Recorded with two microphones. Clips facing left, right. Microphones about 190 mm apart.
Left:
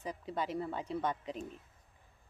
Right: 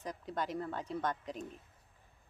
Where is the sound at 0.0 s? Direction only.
5° left (ahead or behind).